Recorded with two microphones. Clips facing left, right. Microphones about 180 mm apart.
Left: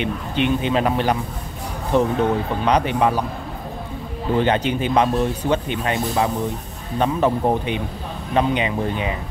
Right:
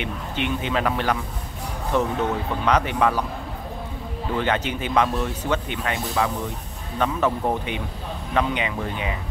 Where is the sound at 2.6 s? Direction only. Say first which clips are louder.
Left 1 dB; 25° left (ahead or behind).